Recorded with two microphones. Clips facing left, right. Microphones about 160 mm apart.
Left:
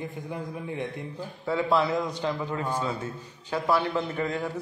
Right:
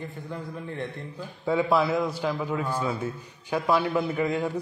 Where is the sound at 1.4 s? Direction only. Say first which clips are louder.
Right 2 dB; 15° right (ahead or behind).